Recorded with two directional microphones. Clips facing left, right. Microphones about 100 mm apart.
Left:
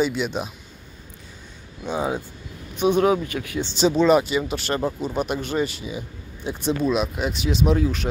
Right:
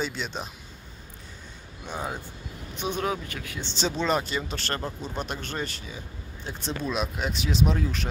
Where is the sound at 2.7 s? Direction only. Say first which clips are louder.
Left 10 dB; 55° left (ahead or behind).